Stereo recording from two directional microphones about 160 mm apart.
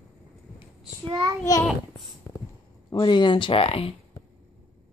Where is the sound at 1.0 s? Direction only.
25° right (ahead or behind).